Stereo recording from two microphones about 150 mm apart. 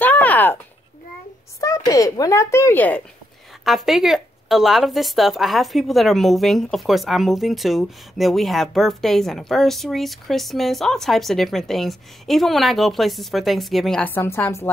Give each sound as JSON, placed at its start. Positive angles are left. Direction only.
{"t": 0.0, "sound": "a sound", "side_deg": 10}
{"t": 1.6, "sound": "speech", "side_deg": 20}
{"t": 3.6, "sound": "speech", "side_deg": 0}